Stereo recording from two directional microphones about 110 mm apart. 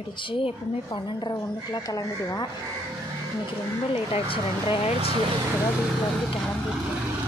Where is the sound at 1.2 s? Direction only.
35° left (ahead or behind).